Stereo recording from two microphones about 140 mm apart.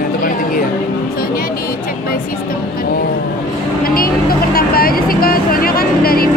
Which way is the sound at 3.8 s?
90° left.